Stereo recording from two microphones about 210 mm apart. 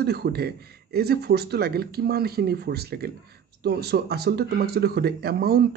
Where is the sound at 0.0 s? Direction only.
50° right (ahead or behind).